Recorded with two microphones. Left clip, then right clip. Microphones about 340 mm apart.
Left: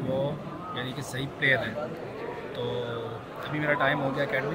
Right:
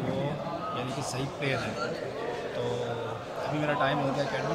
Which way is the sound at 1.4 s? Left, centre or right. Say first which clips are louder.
Left 8 dB; centre.